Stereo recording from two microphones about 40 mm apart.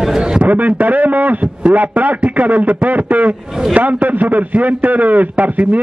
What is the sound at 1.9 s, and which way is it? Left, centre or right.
A man's voice, right.